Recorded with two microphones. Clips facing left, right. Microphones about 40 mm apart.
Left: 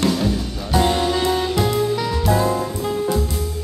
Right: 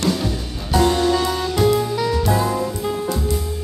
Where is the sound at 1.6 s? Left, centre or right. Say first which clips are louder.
Right 2 dB; centre.